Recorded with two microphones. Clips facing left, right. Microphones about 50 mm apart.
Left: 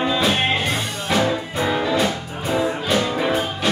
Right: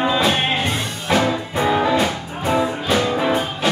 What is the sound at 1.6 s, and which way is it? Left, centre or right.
Music, centre.